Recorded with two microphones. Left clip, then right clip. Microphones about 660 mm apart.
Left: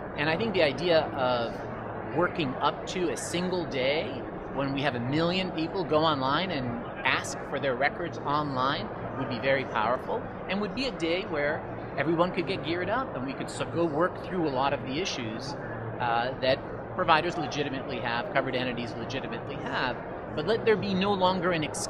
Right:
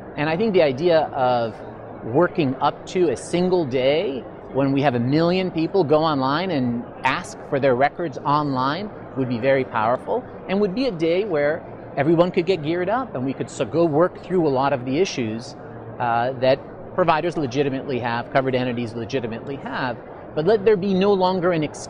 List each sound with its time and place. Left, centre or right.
0.2 s a man's voice: right